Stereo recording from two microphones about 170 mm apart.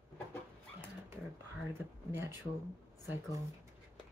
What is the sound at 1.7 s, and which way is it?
Speech, 15° right (ahead or behind).